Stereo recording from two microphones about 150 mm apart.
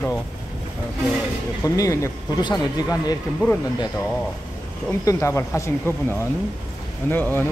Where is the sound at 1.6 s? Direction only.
20° left (ahead or behind).